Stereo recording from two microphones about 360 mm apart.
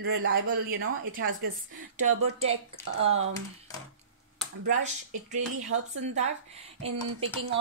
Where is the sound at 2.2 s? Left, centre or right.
Centre.